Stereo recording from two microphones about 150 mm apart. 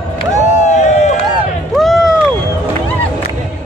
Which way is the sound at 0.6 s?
55° left (ahead or behind).